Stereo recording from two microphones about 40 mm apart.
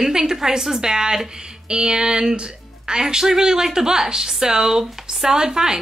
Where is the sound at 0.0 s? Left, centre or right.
Centre.